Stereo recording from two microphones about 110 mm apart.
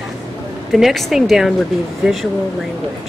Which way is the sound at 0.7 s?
Centre (ahead or behind).